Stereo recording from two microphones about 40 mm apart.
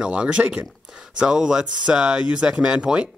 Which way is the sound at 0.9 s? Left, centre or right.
Right.